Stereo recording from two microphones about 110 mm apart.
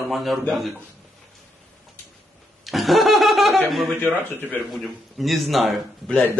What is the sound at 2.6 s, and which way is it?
Laughter, centre (ahead or behind).